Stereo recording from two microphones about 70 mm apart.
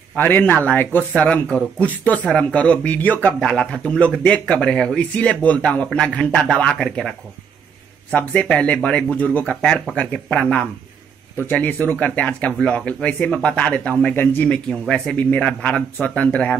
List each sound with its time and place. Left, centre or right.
0.1 s speech: left
3.3 s speech: centre
8.1 s speech: centre
14.5 s speech: centre